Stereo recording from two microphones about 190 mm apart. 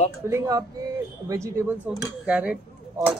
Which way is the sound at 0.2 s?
15° right (ahead or behind).